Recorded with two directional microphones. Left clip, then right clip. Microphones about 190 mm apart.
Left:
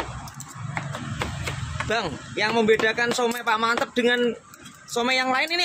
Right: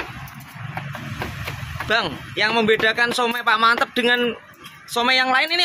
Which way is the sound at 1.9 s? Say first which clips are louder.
Right 6 dB; 5° left (ahead or behind).